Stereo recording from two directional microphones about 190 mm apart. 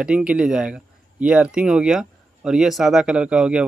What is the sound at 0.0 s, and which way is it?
Speech, 5° right (ahead or behind).